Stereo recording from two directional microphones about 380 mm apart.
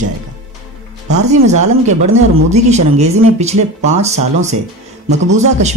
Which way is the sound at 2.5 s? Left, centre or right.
Centre.